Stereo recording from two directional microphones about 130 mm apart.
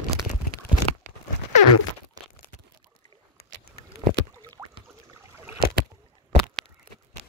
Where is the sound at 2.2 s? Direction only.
30° right (ahead or behind).